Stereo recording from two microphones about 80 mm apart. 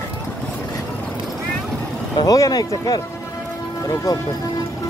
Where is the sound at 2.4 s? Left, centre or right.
Left.